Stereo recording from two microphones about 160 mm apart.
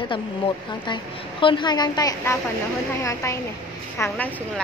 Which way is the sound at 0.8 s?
30° left (ahead or behind).